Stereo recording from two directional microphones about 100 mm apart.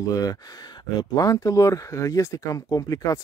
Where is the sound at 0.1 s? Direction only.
40° left (ahead or behind).